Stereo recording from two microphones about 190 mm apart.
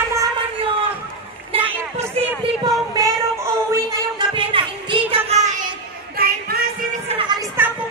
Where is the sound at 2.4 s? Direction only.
20° right (ahead or behind).